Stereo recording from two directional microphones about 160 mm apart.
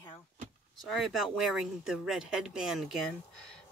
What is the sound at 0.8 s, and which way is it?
Speech, centre (ahead or behind).